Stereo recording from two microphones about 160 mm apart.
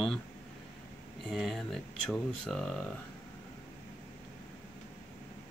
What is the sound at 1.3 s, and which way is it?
Speech, centre (ahead or behind).